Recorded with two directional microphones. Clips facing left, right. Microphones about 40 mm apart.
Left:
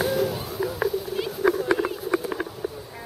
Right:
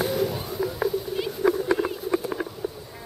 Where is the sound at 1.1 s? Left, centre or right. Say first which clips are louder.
Even; centre.